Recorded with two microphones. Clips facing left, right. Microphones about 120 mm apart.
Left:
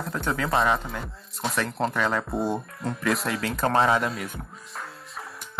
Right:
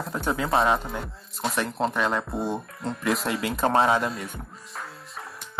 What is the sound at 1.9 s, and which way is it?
Speech, 10° right (ahead or behind).